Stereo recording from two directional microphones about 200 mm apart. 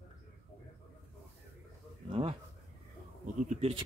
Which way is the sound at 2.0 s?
25° right (ahead or behind).